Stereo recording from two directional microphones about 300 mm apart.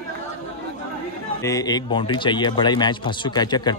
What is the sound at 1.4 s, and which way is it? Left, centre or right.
A man's voice, centre.